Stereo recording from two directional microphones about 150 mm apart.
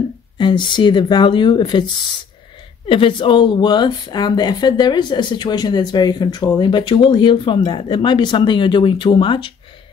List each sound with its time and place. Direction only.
0.4 s speech: 30° left (ahead or behind)
2.9 s speech: 35° left (ahead or behind)